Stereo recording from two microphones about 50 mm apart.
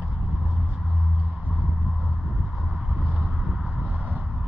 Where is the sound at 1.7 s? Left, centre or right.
Centre.